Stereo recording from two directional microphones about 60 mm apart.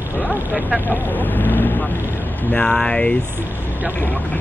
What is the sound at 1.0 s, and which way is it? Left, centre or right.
Speech, left.